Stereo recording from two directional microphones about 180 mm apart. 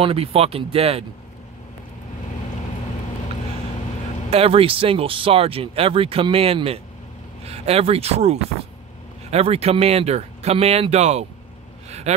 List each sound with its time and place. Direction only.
0.0 s speech: 35° right (ahead or behind)
4.3 s speech: 30° right (ahead or behind)